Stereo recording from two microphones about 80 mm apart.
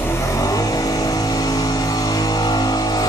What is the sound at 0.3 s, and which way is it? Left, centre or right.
Vehicle, left.